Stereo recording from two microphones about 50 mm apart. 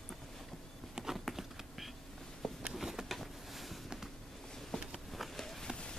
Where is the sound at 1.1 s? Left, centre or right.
Centre.